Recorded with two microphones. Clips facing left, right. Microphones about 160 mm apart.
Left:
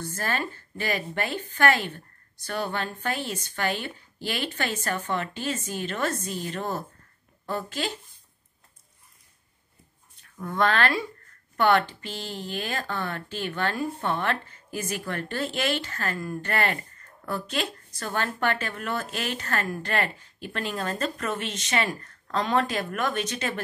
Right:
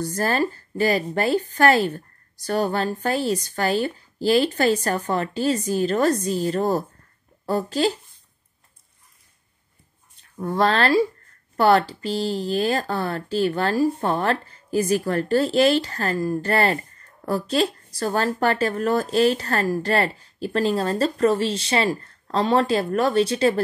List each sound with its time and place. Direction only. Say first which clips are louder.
0.0 s speech: right 8 dB; 40° right (ahead or behind)
10.3 s speech: right 4 dB; 35° right (ahead or behind)